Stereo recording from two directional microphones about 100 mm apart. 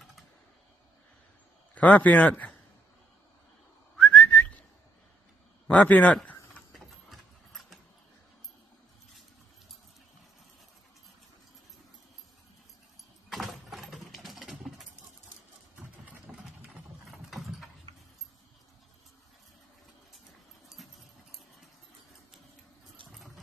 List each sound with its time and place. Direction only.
1.8 s a man's voice: 15° left (ahead or behind)
3.9 s whistling: 10° left (ahead or behind)
5.7 s a man's voice: 15° left (ahead or behind)
6.7 s a sound: centre (ahead or behind)
13.3 s a sound: centre (ahead or behind)
16.1 s engine: 15° right (ahead or behind)
17.0 s vehicle: centre (ahead or behind)
20.6 s dog: centre (ahead or behind)
23.1 s vehicle: centre (ahead or behind)